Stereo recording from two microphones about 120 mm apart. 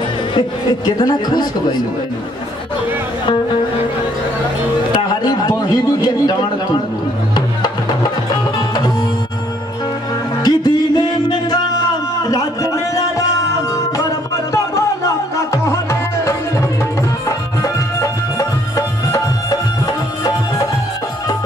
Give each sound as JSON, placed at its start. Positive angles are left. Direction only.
{"t": 0.3, "sound": "speech", "side_deg": 40}
{"t": 5.2, "sound": "a man's voice", "side_deg": 35}
{"t": 10.4, "sound": "music", "side_deg": 35}
{"t": 12.3, "sound": "a sound", "side_deg": 30}
{"t": 15.5, "sound": "tabla", "side_deg": 25}
{"t": 17.6, "sound": "music", "side_deg": 25}